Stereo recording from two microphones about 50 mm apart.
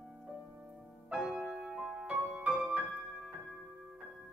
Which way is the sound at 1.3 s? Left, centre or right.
Centre.